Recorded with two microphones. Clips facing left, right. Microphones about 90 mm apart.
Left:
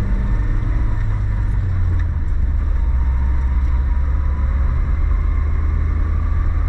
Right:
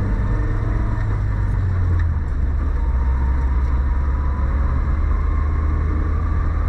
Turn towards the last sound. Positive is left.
turn(degrees=-15)  # may be behind; listen again after turning